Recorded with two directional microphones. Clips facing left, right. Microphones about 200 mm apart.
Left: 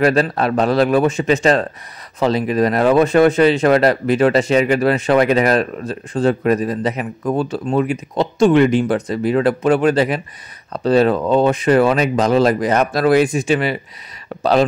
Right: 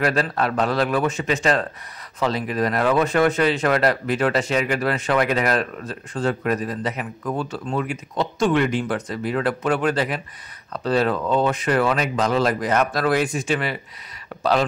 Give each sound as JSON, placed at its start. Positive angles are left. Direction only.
{"t": 0.0, "sound": "speech", "side_deg": 25}
{"t": 14.4, "sound": "speech", "side_deg": 25}